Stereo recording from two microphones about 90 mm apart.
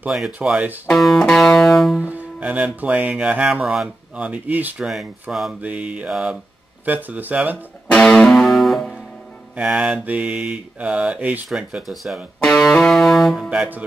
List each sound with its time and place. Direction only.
0.4 s speech: 15° right (ahead or behind)
0.8 s music: centre (ahead or behind)
2.0 s speech: 15° right (ahead or behind)
4.7 s music: 5° right (ahead or behind)
5.3 s speech: 10° right (ahead or behind)
6.0 s music: 5° right (ahead or behind)
6.9 s speech: 20° right (ahead or behind)
7.9 s music: 10° left (ahead or behind)
9.6 s speech: 10° right (ahead or behind)
11.4 s music: 5° right (ahead or behind)
13.5 s speech: 15° right (ahead or behind)